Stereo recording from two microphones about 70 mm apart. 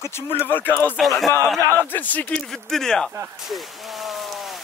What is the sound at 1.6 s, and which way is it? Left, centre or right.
Speech, right.